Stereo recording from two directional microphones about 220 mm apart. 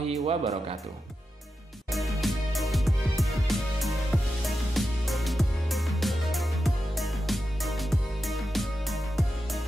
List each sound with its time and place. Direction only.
0.0 s music: 25° right (ahead or behind)
1.9 s music: centre (ahead or behind)